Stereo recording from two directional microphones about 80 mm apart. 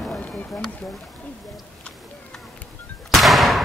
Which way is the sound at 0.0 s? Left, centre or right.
Centre.